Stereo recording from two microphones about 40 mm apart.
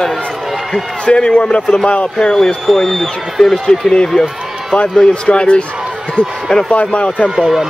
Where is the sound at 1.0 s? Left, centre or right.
Left.